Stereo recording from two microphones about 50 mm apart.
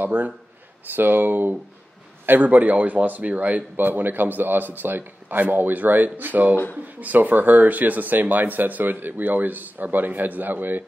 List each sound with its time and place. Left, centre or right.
0.0 s speech: right
3.7 s speech: right
6.5 s speech: left
6.8 s speech: right